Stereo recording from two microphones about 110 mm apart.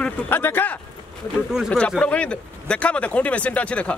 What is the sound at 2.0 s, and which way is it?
Speech, 10° left (ahead or behind).